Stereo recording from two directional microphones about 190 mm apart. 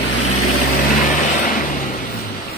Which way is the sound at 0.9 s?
45° left (ahead or behind).